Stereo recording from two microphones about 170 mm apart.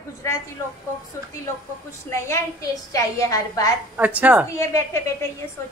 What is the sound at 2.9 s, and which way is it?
Speech, 20° left (ahead or behind).